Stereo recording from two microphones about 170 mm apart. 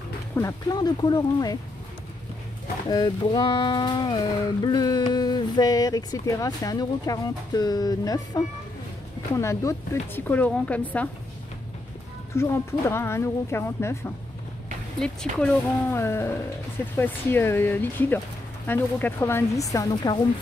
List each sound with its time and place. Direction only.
0.4 s speech: 20° left (ahead or behind)
2.9 s speech: 25° left (ahead or behind); by 11.1 s 10° left (ahead or behind)
12.4 s speech: 15° left (ahead or behind)